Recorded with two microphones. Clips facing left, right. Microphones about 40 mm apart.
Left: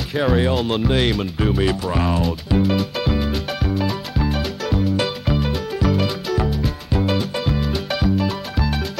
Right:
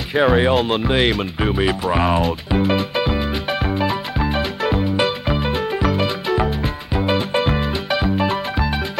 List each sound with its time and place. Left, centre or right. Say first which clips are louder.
0.2 s speech: right 4 dB; right
2.5 s music: even; centre
7.3 s music: right 4 dB; right
7.7 s music: right 2 dB; centre
8.2 s music: right 3 dB; right